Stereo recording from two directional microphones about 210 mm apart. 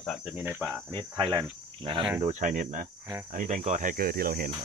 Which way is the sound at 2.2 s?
35° right (ahead or behind).